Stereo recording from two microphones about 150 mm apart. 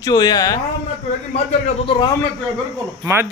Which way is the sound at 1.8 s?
35° left (ahead or behind).